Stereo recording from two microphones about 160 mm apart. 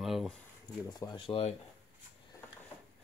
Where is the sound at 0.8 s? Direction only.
25° left (ahead or behind).